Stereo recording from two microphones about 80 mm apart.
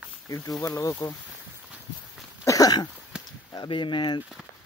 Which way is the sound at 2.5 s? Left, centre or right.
Left.